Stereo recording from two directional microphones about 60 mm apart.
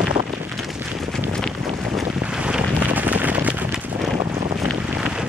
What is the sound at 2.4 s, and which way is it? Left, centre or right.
Wind noise, centre.